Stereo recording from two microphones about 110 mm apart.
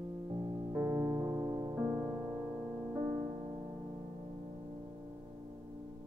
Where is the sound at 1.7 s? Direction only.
20° right (ahead or behind).